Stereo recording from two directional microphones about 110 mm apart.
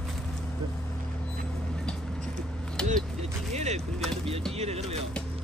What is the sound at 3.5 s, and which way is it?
Vehicle, 90° right.